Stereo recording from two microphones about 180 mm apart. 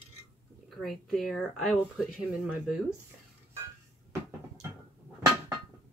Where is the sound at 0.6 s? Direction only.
Centre (ahead or behind).